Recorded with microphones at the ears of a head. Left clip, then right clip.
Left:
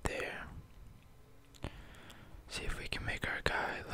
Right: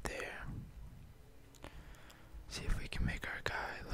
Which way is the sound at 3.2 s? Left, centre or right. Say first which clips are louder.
Left 5 dB; left.